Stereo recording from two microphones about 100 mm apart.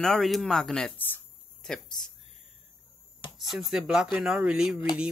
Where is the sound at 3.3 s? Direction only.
5° right (ahead or behind).